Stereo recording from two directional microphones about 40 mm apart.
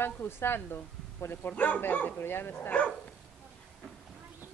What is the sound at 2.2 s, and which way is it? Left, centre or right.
Speech, left.